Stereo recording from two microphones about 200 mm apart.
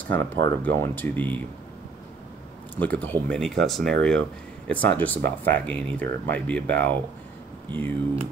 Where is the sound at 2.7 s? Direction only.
5° left (ahead or behind).